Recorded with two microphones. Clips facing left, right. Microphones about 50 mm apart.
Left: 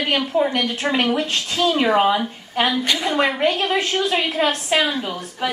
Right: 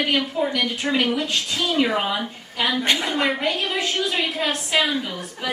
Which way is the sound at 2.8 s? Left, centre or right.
Right.